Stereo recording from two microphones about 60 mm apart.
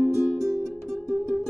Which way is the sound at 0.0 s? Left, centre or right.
Centre.